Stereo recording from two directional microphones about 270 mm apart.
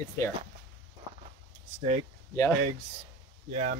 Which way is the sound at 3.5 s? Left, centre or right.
Right.